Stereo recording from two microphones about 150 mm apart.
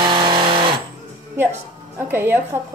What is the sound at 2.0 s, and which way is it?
Speech, 15° right (ahead or behind).